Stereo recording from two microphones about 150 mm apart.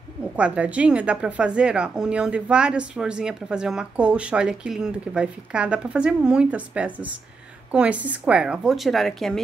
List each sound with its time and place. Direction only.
0.4 s a woman's voice: 10° right (ahead or behind)